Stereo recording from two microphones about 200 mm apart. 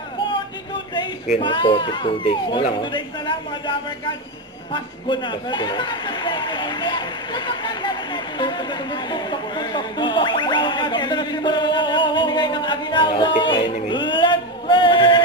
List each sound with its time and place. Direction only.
1.4 s a man's voice: 25° left (ahead or behind)
4.7 s a man's voice: 25° left (ahead or behind)
9.1 s a sound: 20° left (ahead or behind)